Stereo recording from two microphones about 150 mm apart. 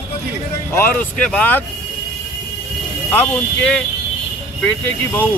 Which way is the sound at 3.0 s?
15° left (ahead or behind).